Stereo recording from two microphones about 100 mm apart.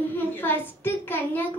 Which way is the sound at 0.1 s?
20° left (ahead or behind).